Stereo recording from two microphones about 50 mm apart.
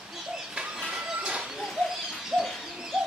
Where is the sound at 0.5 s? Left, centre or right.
Centre.